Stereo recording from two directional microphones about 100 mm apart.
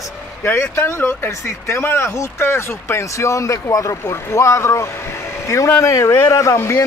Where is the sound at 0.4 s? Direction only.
25° left (ahead or behind).